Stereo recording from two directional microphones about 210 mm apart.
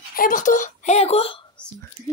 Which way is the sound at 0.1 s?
40° left (ahead or behind).